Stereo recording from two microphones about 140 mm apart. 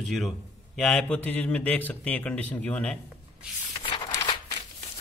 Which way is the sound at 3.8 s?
35° left (ahead or behind).